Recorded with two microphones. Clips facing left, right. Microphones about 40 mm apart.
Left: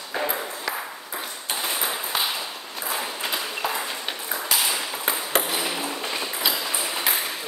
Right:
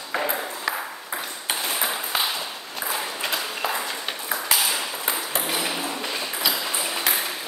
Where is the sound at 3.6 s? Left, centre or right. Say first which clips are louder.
Right 1 dB; centre.